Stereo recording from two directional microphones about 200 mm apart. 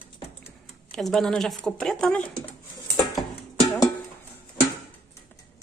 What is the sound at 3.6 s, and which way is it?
Music, 15° left (ahead or behind).